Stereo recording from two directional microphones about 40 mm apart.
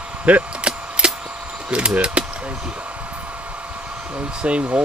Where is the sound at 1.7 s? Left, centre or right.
Right.